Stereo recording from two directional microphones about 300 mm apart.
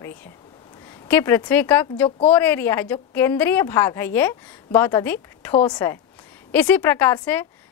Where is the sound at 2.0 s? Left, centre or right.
Centre.